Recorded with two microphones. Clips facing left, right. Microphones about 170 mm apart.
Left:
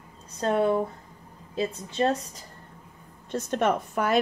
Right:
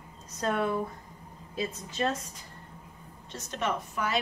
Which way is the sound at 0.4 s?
30° left (ahead or behind).